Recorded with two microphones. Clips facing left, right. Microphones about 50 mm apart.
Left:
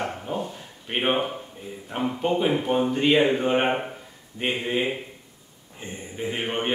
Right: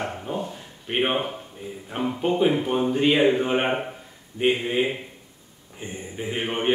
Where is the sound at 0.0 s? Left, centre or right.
Centre.